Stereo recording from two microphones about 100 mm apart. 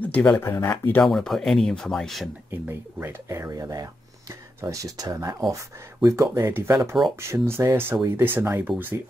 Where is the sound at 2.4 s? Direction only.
25° right (ahead or behind).